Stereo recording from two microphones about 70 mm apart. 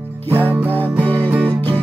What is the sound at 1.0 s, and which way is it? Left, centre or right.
Music, centre.